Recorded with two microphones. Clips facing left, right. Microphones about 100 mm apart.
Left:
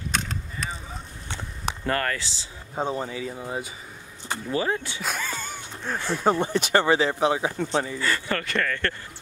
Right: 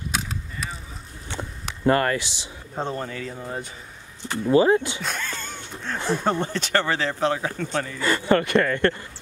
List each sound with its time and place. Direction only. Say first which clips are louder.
0.1 s a sound: left 1 dB; 5° right (ahead or behind)
1.9 s speech: right 7 dB; 20° right (ahead or behind)
2.7 s speech: left 1 dB; 5° left (ahead or behind)
4.5 s speech: right 10 dB; 25° right (ahead or behind)
5.0 s wheeze: even; 5° left (ahead or behind)
5.9 s speech: right 4 dB; 25° right (ahead or behind)
6.4 s speech: left 2 dB; 15° left (ahead or behind)
8.0 s speech: right 6 dB; 25° right (ahead or behind)